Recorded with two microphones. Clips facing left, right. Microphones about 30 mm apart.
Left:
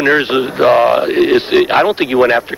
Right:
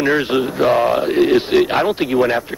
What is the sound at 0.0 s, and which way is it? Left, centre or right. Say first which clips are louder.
Speech: left 4 dB; left.